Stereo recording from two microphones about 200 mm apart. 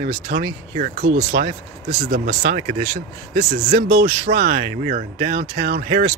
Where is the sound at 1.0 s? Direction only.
60° right (ahead or behind).